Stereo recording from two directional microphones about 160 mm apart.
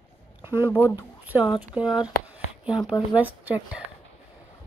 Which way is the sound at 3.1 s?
10° right (ahead or behind).